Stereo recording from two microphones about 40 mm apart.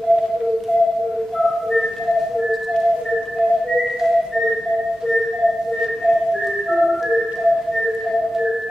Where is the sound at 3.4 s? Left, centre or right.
Centre.